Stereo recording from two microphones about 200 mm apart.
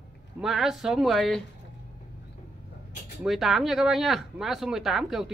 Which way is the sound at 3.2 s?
Centre (ahead or behind).